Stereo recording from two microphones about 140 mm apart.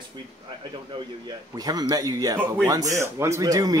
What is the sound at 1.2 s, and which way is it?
Speech, 30° right (ahead or behind).